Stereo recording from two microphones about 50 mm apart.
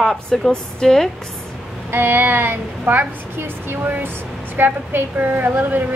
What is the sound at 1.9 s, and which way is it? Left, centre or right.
A woman's voice, right.